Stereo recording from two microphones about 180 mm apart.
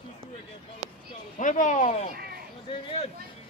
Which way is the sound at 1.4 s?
45° left (ahead or behind).